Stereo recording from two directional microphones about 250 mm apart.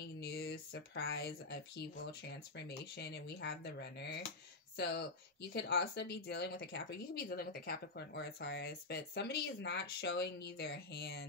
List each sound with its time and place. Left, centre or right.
0.0 s speech: left